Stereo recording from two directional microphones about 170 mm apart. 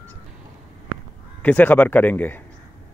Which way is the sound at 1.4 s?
10° left (ahead or behind).